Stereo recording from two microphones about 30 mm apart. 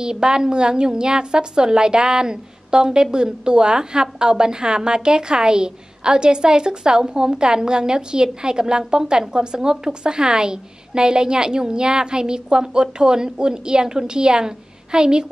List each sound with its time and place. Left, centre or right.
0.0 s a woman's voice: right